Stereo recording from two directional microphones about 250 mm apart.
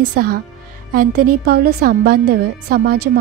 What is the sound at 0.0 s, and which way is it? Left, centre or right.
A woman's voice, right.